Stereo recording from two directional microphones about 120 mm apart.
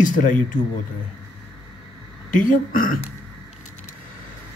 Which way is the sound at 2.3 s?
90° left.